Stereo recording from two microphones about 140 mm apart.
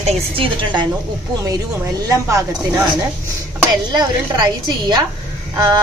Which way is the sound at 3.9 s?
30° right (ahead or behind).